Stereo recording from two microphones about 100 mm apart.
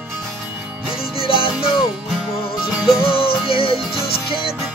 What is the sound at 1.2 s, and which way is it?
Music, 65° left (ahead or behind).